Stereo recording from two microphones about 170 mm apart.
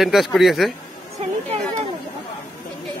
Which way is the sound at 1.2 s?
35° right (ahead or behind).